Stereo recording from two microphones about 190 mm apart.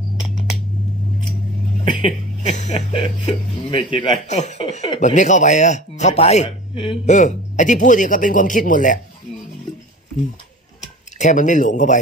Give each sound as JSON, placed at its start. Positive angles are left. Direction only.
{"t": 1.9, "sound": "speech", "side_deg": 25}
{"t": 3.0, "sound": "speech", "side_deg": 25}
{"t": 11.1, "sound": "speech", "side_deg": 40}